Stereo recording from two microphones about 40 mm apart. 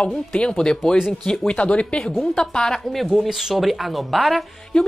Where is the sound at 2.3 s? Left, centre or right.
Centre.